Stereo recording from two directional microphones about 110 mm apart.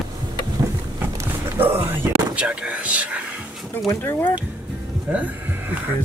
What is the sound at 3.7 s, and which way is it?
Speech, 20° left (ahead or behind).